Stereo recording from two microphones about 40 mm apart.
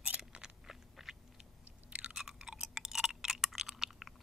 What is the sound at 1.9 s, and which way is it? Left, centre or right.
Chewing, right.